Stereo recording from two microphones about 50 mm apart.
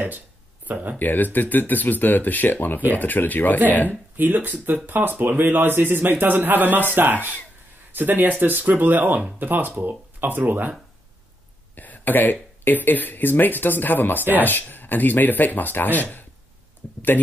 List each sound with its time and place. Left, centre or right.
0.9 s speech: left
3.9 s speech: right
11.7 s speech: left